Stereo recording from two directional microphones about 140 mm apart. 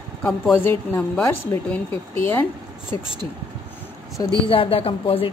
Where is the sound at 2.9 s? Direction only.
40° right (ahead or behind).